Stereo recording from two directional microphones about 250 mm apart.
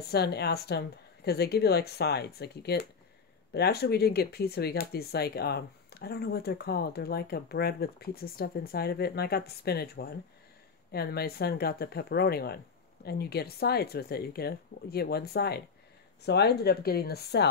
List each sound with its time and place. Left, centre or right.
0.1 s speech: left